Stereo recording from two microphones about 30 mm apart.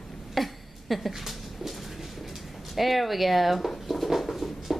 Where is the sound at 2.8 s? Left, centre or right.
Centre.